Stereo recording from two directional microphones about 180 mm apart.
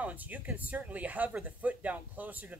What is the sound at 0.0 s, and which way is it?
Speech, 10° right (ahead or behind).